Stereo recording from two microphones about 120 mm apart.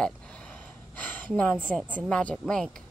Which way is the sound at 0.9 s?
15° left (ahead or behind).